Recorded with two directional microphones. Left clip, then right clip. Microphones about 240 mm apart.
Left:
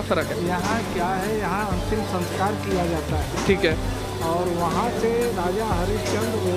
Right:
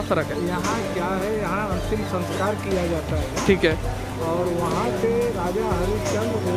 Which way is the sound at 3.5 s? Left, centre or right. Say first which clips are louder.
Right 1 dB; centre.